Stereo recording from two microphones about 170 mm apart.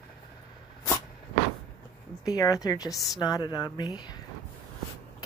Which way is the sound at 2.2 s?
20° left (ahead or behind).